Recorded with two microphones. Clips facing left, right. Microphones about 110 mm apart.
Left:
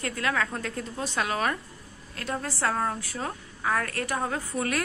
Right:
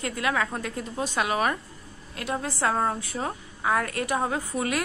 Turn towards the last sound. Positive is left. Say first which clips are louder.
# right 2 dB
turn(degrees=-10)  # may be behind; listen again after turning